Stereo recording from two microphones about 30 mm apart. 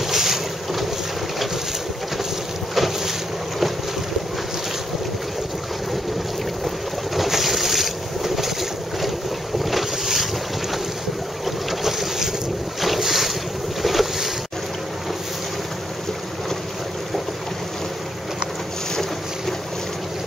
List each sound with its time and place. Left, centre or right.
0.0 s boat: centre
2.7 s boat: centre
7.2 s boat: centre
11.4 s boat: centre